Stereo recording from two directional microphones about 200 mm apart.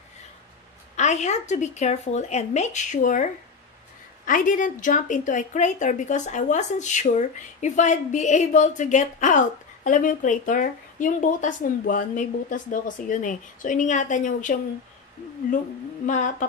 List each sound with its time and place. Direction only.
0.9 s a woman's voice: 35° left (ahead or behind)
4.3 s a woman's voice: 40° left (ahead or behind)
16.1 s a woman's voice: 40° left (ahead or behind)